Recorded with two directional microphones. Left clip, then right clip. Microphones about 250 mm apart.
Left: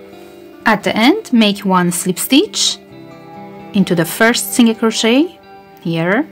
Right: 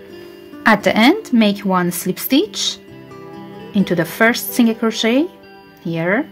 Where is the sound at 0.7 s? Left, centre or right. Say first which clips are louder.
Even; centre.